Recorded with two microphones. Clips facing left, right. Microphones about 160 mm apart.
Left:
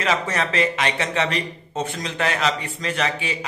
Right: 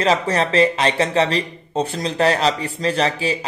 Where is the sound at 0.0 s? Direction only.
35° right (ahead or behind).